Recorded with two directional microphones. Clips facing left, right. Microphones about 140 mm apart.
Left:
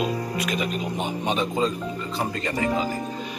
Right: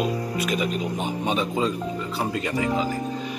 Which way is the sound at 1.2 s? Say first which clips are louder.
Even; 5° right (ahead or behind).